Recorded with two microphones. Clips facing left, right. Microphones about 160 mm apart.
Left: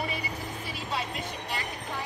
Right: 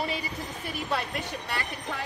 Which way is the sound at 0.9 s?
65° right (ahead or behind).